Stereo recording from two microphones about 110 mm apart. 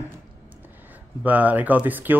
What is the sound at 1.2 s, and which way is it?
Speech, 15° right (ahead or behind).